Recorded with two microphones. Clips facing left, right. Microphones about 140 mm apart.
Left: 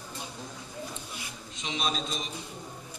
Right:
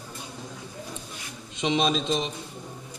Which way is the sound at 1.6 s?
90° right.